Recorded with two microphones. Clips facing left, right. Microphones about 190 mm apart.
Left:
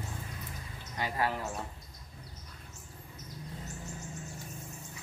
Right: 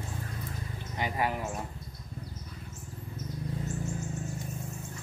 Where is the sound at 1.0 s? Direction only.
15° right (ahead or behind).